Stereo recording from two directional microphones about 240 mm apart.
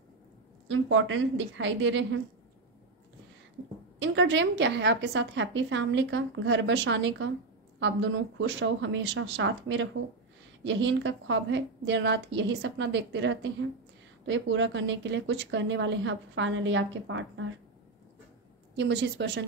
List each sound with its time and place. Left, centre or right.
0.7 s a woman's voice: right
4.0 s a woman's voice: right
18.8 s a woman's voice: right